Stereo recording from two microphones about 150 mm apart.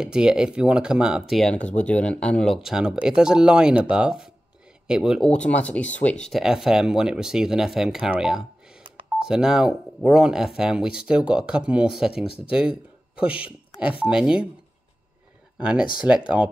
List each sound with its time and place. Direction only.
0.0 s speech: 5° right (ahead or behind)
15.5 s speech: 5° right (ahead or behind)